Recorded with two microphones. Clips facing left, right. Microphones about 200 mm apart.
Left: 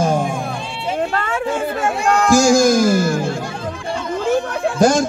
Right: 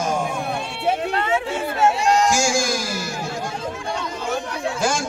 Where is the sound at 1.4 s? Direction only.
50° left (ahead or behind).